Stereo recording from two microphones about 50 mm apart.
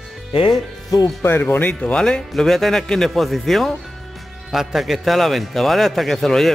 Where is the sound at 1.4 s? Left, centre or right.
Left.